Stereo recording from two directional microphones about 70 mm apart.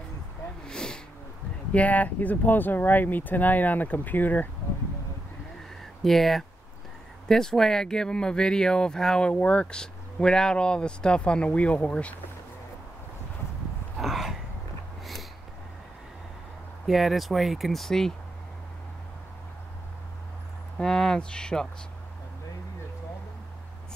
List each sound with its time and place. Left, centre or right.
0.7 s sniff: centre
1.7 s speech: left
6.0 s speech: centre
13.9 s a sound: centre
16.8 s speech: centre
20.7 s speech: centre